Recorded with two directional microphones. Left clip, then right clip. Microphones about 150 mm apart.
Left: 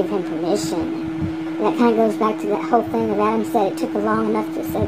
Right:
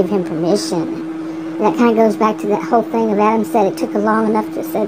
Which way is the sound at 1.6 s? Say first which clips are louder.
Right 4 dB; 25° right (ahead or behind).